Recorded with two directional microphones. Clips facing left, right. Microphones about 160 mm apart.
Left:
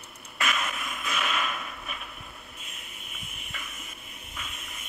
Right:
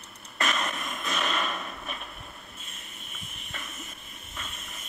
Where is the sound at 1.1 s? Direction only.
35° right (ahead or behind).